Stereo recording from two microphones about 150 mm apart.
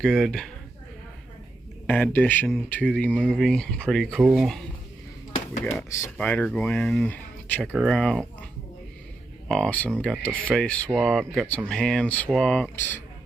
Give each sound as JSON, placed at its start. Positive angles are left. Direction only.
{"t": 0.0, "sound": "speech", "side_deg": 0}
{"t": 1.9, "sound": "speech", "side_deg": 10}
{"t": 5.8, "sound": "speech", "side_deg": 20}
{"t": 6.1, "sound": "speech", "side_deg": 5}
{"t": 9.5, "sound": "speech", "side_deg": 5}